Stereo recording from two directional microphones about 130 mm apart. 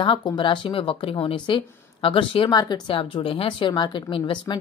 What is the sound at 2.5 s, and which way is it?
Speech, 30° left (ahead or behind).